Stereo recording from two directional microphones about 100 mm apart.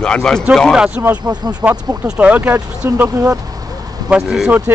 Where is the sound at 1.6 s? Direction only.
25° right (ahead or behind).